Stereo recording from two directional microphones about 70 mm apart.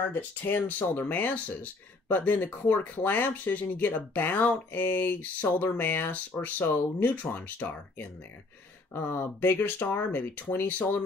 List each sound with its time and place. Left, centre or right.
0.1 s speech: left